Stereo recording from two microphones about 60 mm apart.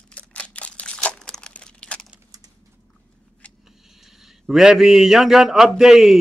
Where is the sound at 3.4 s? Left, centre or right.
Left.